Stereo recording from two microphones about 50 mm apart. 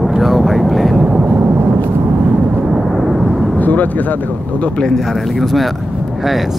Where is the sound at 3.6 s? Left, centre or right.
Left.